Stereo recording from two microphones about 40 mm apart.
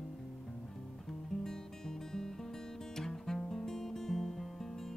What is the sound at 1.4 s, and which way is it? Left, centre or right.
Music, centre.